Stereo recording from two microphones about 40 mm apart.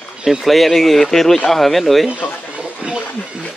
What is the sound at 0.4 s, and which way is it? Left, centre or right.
Speech, centre.